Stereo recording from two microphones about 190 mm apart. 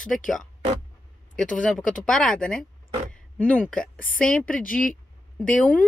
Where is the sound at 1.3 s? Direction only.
5° left (ahead or behind).